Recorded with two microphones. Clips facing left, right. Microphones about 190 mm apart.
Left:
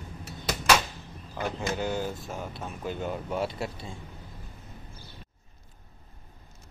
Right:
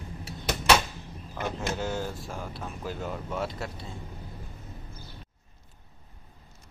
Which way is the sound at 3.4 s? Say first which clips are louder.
Left 2 dB; 30° left (ahead or behind).